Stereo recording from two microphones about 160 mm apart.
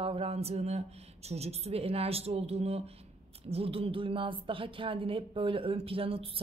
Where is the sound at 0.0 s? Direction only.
35° right (ahead or behind).